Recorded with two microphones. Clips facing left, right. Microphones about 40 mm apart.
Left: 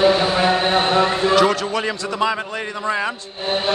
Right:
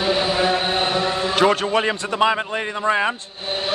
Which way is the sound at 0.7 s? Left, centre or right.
Left.